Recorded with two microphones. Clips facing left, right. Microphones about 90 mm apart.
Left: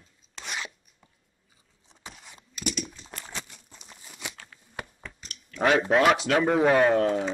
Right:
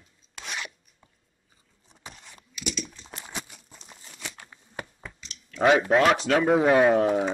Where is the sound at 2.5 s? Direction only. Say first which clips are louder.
Left 2 dB; 40° left (ahead or behind).